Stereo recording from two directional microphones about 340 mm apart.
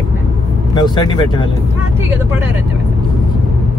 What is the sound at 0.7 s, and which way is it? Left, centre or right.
Speech, centre.